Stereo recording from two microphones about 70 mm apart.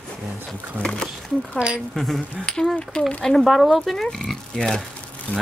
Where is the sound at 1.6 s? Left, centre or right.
Centre.